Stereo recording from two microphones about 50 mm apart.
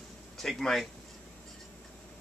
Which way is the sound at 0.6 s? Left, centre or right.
Centre.